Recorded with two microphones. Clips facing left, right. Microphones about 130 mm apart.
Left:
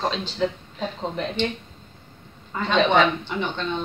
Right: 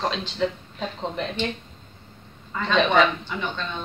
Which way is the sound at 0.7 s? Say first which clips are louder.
Left 1 dB; 5° left (ahead or behind).